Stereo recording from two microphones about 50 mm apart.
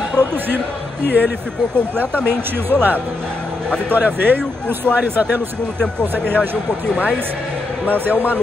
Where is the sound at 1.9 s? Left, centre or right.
Right.